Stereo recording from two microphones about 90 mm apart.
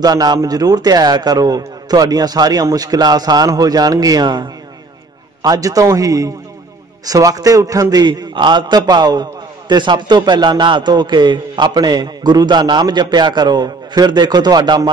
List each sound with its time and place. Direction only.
0.0 s a man's voice: 50° right (ahead or behind)